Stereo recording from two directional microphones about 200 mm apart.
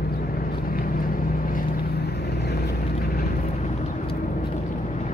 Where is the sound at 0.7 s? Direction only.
45° left (ahead or behind).